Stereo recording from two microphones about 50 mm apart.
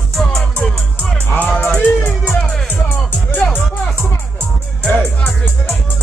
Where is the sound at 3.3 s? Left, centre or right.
Left.